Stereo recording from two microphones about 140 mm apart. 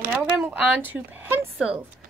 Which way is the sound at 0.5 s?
10° right (ahead or behind).